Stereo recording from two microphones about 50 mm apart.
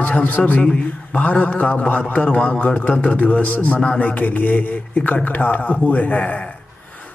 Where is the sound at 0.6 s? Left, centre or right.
Centre.